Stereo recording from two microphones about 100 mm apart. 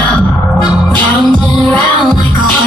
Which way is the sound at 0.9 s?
15° left (ahead or behind).